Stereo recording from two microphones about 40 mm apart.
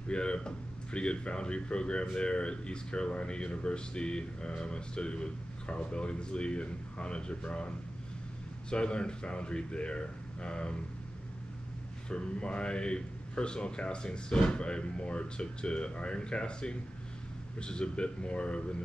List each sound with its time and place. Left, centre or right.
0.1 s speech: left
12.1 s speech: left